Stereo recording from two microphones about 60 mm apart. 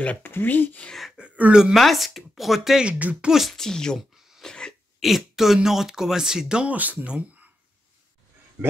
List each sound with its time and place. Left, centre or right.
0.2 s speech: left
1.1 s speech: right
1.5 s speech: centre
1.8 s speech: centre
2.8 s speech: right
3.3 s speech: centre
3.5 s speech: centre
4.4 s a sound: centre
5.0 s speech: centre
6.7 s speech: right